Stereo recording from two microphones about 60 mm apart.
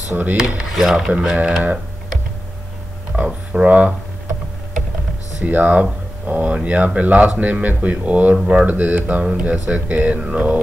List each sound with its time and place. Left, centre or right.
0.1 s speech: right
0.4 s speech: centre
3.1 s speech: right
5.4 s speech: right
8.4 s speech: centre
8.6 s speech: right